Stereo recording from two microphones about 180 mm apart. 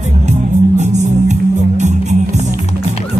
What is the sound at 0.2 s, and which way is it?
Music, 40° right (ahead or behind).